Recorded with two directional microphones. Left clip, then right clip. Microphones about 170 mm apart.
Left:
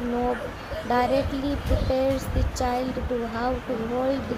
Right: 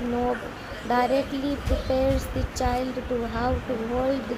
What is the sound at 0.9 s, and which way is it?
Speech, centre (ahead or behind).